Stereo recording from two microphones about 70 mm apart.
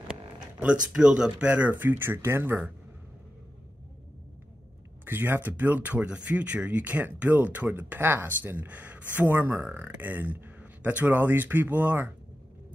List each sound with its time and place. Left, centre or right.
0.7 s speech: centre; by 2.7 s right
5.0 s speech: right